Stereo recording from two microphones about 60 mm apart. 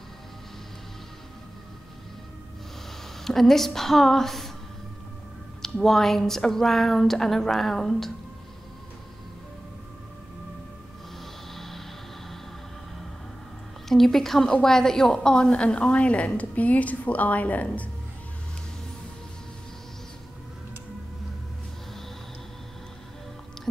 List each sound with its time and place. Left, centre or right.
3.3 s a woman's voice: centre
5.6 s a woman's voice: centre
11.5 s music: centre
13.8 s a woman's voice: centre; by 17.8 s left